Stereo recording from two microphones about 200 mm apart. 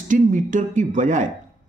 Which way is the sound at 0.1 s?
40° right (ahead or behind).